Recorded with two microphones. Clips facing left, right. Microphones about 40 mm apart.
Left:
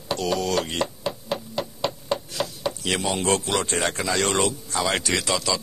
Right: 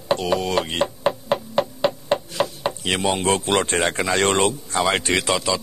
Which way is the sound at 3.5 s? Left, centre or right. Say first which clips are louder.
Right 4 dB; right.